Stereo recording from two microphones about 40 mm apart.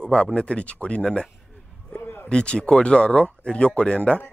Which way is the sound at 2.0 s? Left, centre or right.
Left.